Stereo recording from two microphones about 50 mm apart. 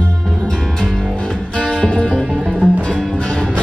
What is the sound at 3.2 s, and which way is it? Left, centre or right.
Music, centre.